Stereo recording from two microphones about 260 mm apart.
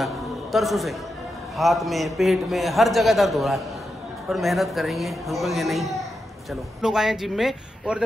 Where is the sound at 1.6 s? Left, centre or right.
Centre.